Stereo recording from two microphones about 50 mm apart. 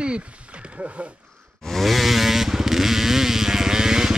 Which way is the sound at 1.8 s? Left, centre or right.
Centre.